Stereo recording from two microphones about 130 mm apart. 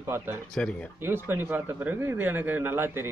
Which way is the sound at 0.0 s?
20° right (ahead or behind).